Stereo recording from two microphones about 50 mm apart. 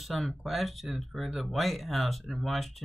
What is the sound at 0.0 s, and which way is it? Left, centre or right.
Speech, centre.